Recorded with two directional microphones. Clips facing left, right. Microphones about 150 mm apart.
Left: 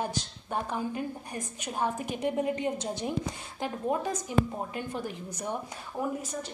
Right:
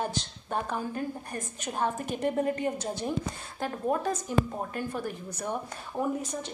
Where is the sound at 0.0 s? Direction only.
10° left (ahead or behind).